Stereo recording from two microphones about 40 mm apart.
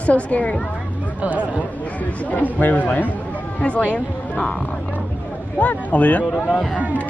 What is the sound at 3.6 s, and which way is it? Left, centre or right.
Speech, left.